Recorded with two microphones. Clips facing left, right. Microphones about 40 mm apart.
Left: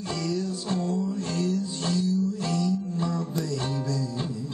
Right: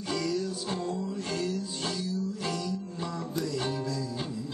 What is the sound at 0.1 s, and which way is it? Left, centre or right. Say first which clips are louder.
Music: left 1 dB; centre.